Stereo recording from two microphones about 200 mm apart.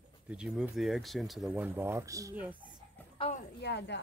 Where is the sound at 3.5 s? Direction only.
60° left (ahead or behind).